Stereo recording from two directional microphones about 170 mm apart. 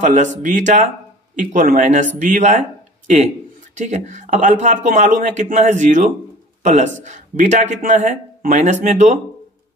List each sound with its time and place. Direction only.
0.0 s speech: 45° right (ahead or behind)
3.7 s a man's voice: 45° right (ahead or behind)